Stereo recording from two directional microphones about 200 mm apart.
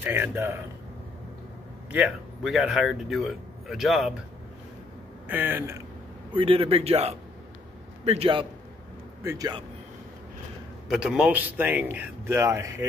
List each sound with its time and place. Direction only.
0.0 s speech: 10° right (ahead or behind)
1.9 s speech: 5° right (ahead or behind)
5.3 s speech: 10° right (ahead or behind)
6.3 s a man's voice: 30° right (ahead or behind)
9.2 s a man's voice: 15° right (ahead or behind)
10.9 s speech: 5° right (ahead or behind)